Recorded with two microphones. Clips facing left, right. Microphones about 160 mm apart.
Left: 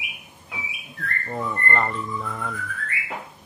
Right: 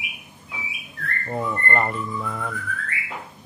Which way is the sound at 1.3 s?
10° right (ahead or behind).